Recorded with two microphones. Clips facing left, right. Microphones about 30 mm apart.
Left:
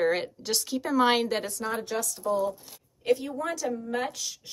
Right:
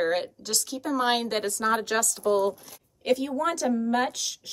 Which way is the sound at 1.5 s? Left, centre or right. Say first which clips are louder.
Right 6 dB; right.